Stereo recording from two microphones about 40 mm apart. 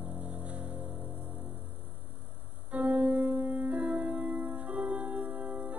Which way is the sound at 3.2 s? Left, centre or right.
Right.